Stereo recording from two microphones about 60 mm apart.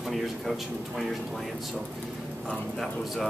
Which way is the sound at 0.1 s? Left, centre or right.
Centre.